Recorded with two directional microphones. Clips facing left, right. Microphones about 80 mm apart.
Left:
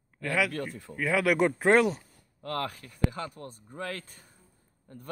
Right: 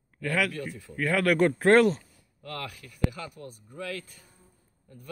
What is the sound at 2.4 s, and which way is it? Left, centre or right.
Speech, left.